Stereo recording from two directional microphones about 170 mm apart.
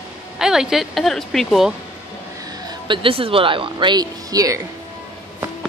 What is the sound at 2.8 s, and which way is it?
Speech, 30° right (ahead or behind).